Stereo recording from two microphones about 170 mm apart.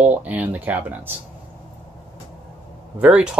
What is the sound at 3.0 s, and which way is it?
Speech, 5° right (ahead or behind).